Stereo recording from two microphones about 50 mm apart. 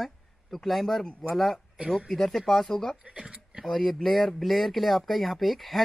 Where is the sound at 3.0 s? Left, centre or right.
Centre.